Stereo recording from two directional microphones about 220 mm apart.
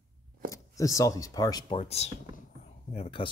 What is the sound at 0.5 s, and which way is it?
Speech, 15° left (ahead or behind).